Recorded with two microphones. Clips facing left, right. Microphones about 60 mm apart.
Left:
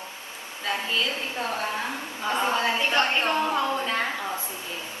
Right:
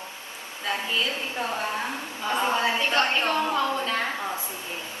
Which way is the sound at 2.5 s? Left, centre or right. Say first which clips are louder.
Even; right.